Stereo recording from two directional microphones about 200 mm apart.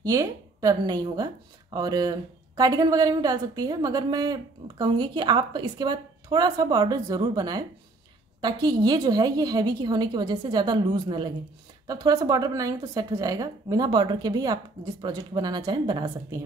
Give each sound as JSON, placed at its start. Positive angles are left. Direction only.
{"t": 0.0, "sound": "a woman's voice", "side_deg": -15}